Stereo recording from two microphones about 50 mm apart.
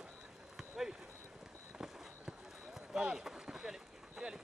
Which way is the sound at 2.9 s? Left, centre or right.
Centre.